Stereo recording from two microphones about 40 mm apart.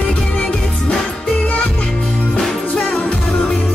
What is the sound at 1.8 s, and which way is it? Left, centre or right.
Music, left.